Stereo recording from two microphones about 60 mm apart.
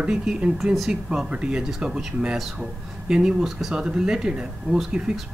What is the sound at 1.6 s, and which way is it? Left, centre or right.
A man's voice, centre.